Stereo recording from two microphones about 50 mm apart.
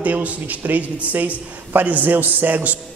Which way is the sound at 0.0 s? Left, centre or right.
Right.